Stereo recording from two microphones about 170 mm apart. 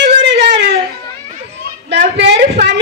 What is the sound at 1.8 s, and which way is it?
Speech, 90° right.